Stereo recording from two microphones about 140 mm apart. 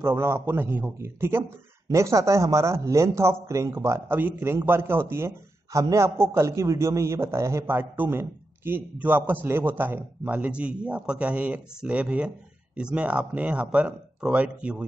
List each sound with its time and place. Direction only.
0.0 s speech: 15° right (ahead or behind)